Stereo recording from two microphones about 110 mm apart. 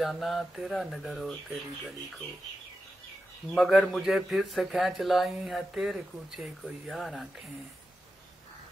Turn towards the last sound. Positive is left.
turn(degrees=0)  # may be behind; listen again after turning